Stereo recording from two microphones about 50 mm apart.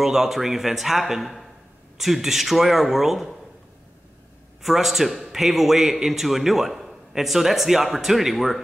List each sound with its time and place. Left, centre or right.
0.0 s a man's voice: centre
4.6 s a man's voice: centre